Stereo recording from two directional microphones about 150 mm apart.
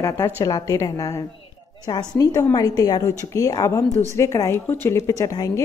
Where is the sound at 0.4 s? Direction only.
25° left (ahead or behind).